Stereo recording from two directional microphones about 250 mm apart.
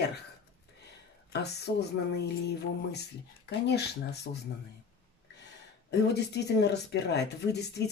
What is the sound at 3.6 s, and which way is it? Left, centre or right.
Speech, left.